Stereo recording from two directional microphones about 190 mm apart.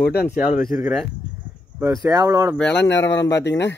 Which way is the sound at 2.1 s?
20° right (ahead or behind).